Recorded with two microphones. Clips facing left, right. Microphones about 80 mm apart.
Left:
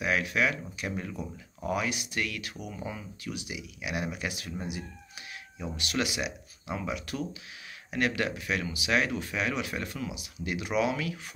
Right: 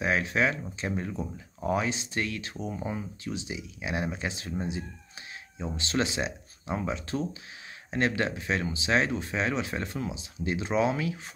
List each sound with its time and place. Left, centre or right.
0.0 s speech: right